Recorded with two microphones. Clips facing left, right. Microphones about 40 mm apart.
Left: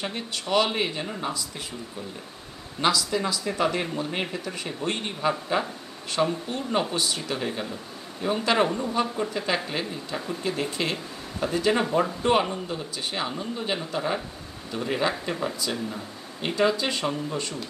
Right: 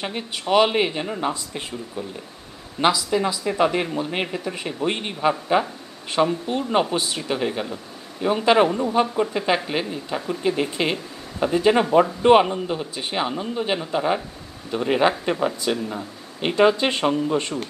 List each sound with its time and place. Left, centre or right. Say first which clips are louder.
0.0 s speech: right 3 dB; centre
2.8 s speech: right 4 dB; centre